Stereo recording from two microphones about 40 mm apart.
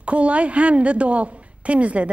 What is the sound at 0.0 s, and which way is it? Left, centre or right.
A woman's voice, right.